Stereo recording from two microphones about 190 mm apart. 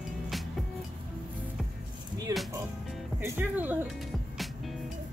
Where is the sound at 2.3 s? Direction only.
15° right (ahead or behind).